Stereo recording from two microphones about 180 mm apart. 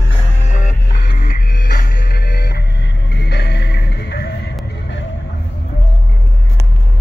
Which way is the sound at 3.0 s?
75° left (ahead or behind).